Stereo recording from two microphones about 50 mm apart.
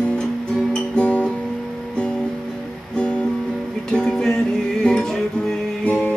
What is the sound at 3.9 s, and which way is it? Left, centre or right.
Music, centre.